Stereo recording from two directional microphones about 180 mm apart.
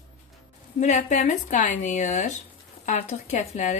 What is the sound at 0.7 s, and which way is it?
Speech, 40° left (ahead or behind).